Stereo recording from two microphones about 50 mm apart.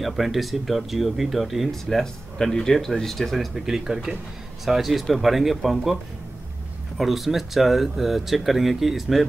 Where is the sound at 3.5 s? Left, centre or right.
Centre.